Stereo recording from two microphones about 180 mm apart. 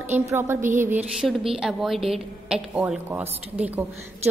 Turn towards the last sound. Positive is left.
turn(degrees=-10)  # may be behind; listen again after turning